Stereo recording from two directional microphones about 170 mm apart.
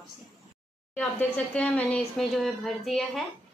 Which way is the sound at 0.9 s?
5° left (ahead or behind).